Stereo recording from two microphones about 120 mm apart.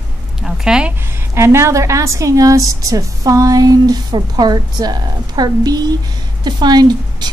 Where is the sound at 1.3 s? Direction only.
20° right (ahead or behind).